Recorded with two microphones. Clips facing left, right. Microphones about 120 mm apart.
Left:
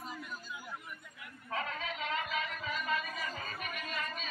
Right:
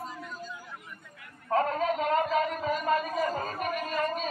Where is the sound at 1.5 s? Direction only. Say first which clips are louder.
Right 12 dB; 45° right (ahead or behind).